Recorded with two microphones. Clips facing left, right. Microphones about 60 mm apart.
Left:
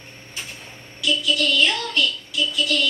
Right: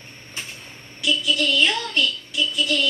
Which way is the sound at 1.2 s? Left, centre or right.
Right.